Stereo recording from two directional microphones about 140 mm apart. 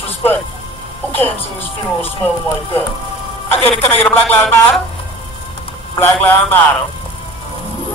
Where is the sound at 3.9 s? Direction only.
15° left (ahead or behind).